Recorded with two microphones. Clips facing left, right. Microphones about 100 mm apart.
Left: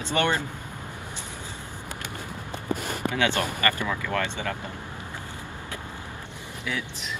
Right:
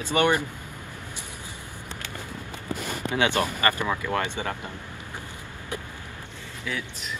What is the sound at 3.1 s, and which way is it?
Speech, 20° right (ahead or behind).